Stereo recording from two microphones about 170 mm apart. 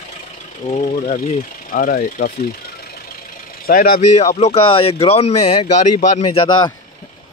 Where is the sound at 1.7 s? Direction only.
55° left (ahead or behind).